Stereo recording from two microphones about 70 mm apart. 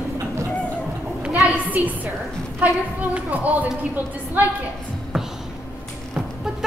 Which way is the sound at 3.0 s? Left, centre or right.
Right.